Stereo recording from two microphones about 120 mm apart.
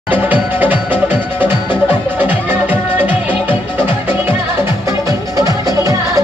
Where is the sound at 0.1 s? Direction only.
15° right (ahead or behind).